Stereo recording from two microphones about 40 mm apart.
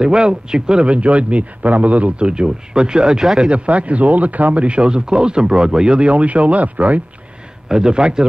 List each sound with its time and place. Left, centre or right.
0.0 s a man's voice: right
3.3 s speech: right
7.6 s a man's voice: centre